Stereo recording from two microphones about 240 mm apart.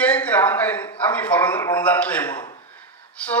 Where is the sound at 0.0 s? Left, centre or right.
Centre.